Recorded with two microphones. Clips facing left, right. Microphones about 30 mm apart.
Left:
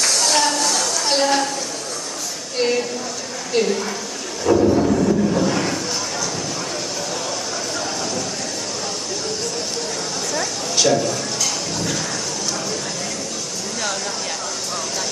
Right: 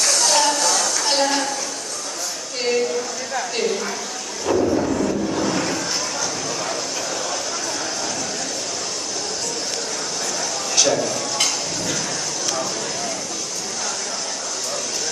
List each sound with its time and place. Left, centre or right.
0.0 s tambourine: centre
1.1 s a woman's voice: centre
2.6 s a woman's voice: centre
4.5 s a sound: centre
10.8 s speech: centre